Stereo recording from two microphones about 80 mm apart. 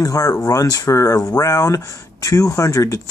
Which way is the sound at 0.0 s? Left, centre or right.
Left.